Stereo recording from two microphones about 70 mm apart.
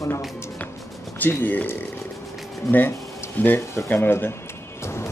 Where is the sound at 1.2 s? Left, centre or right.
Left.